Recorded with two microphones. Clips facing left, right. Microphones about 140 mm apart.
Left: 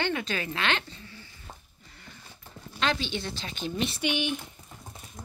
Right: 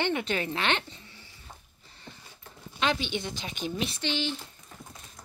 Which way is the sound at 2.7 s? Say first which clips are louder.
Even; 15° right (ahead or behind).